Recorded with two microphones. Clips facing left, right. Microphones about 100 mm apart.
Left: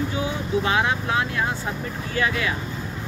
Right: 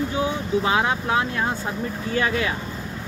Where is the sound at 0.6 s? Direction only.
25° right (ahead or behind).